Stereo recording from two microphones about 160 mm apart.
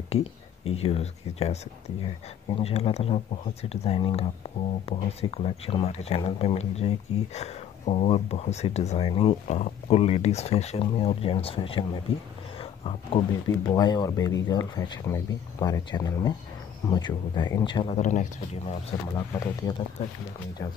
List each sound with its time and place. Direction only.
0.1 s speech: 40° left (ahead or behind)
12.5 s a sound: 35° left (ahead or behind)
13.7 s speech: 25° left (ahead or behind)
17.9 s speech: 45° left (ahead or behind)
19.1 s speech: 25° left (ahead or behind)